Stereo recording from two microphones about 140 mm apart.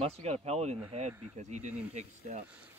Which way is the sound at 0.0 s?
50° right (ahead or behind).